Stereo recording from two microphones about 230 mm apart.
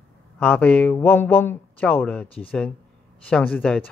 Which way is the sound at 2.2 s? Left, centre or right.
Left.